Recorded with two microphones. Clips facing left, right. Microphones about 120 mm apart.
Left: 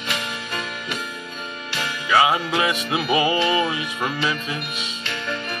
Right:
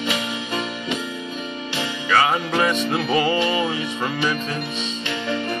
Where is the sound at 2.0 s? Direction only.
10° left (ahead or behind).